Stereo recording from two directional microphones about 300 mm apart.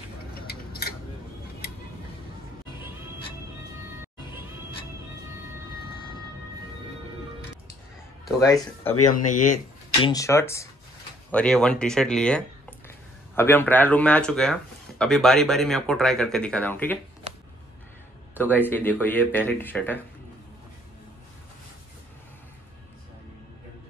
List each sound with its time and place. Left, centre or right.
0.3 s tick-tock: left
8.3 s speech: centre
9.0 s speech: left
10.0 s speech: centre
17.3 s a sound: right
18.3 s speech: centre